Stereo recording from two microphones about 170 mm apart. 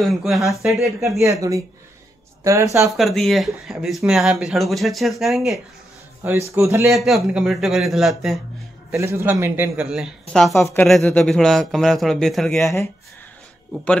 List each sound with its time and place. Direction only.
0.0 s speech: centre (ahead or behind)
1.1 s a man's voice: 20° right (ahead or behind)
3.0 s speech: centre (ahead or behind)
6.2 s a man's voice: 15° right (ahead or behind)
6.9 s speech: centre (ahead or behind)
8.9 s a man's voice: 15° right (ahead or behind)
10.5 s speech: 15° left (ahead or behind)
10.9 s speech: centre (ahead or behind)